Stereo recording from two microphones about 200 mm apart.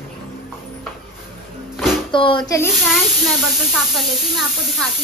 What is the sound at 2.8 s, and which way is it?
Speech, centre (ahead or behind).